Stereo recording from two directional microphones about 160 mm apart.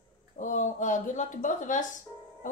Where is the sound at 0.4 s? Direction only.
50° left (ahead or behind).